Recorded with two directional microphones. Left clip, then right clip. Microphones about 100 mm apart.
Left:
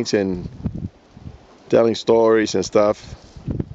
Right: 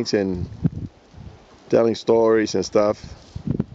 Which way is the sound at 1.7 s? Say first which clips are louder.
Left 2 dB; 5° left (ahead or behind).